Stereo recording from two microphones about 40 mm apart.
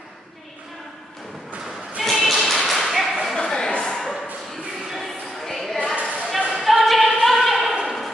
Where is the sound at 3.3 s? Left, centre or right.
Centre.